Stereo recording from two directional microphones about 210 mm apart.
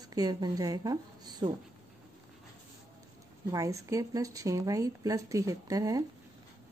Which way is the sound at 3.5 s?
15° right (ahead or behind).